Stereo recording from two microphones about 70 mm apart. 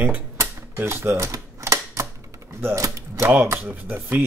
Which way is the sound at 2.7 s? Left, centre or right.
Right.